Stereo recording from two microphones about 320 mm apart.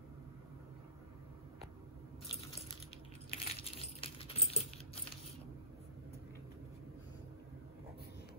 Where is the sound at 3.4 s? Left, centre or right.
Centre.